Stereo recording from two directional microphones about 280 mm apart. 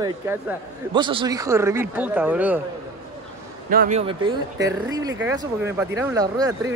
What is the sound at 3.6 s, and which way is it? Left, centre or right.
Speech, right.